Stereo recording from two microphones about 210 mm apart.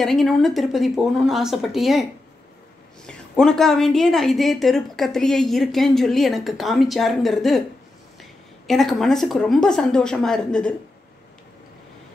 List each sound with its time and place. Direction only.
0.0 s a woman's voice: centre (ahead or behind)
3.1 s a woman's voice: centre (ahead or behind)